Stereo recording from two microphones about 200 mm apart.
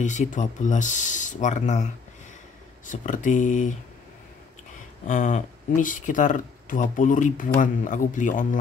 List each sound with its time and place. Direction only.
0.0 s speech: 40° left (ahead or behind)
2.9 s speech: 40° left (ahead or behind)
5.0 s speech: 40° left (ahead or behind)